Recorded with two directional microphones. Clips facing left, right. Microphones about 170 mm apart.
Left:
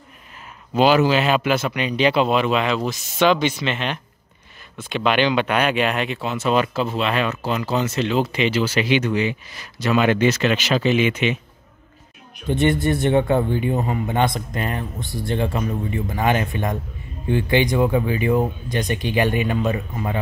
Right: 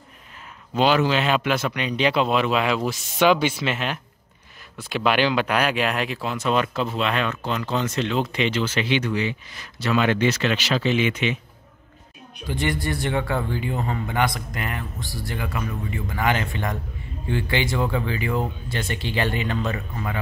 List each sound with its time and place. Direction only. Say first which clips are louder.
0.7 s speech: left 4 dB; 5° left (ahead or behind)
12.4 s a man's voice: left 7 dB; 25° left (ahead or behind)